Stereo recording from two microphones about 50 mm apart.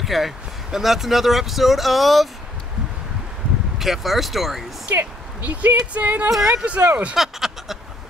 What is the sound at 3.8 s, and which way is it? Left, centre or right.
Speech, centre.